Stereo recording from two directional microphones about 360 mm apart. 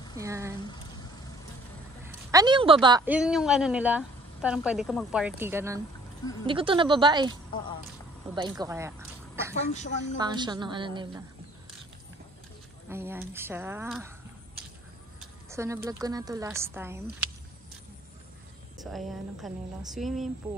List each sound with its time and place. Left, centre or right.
0.2 s a woman's voice: centre
2.0 s a woman's voice: centre
8.4 s a woman's voice: centre
12.9 s a woman's voice: centre
15.5 s a woman's voice: centre
18.8 s speech: centre